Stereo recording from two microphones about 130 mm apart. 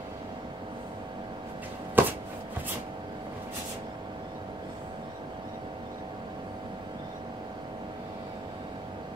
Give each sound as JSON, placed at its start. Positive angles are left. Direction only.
{"t": 2.0, "sound": "shuffling cards", "side_deg": -15}